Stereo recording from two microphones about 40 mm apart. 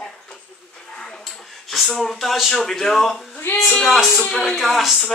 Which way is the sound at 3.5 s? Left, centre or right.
Left.